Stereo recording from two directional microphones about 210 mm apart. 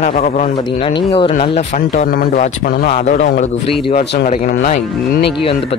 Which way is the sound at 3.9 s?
45° left (ahead or behind).